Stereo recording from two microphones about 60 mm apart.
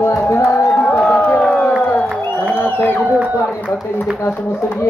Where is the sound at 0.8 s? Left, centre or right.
Centre.